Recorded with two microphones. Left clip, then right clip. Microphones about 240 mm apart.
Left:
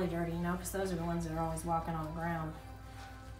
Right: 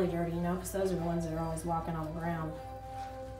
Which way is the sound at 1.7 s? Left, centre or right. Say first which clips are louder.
Right 1 dB; centre.